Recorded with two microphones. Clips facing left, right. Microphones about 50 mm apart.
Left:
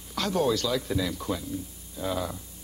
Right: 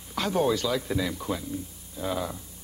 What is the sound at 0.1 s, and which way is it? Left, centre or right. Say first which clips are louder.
Speech: right 1 dB; centre.